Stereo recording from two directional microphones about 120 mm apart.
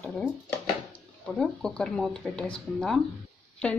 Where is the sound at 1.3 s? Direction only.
5° left (ahead or behind).